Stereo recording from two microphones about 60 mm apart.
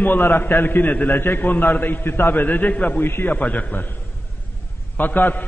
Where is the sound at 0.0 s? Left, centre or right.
Left.